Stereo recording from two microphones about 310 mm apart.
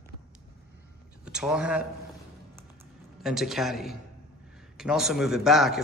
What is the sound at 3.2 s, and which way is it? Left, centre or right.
A man's voice, centre.